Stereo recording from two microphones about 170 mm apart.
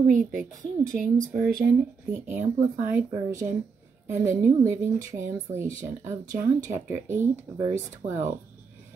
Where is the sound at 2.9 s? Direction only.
15° right (ahead or behind).